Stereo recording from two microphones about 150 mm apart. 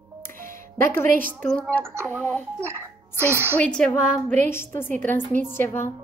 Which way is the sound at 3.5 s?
5° left (ahead or behind).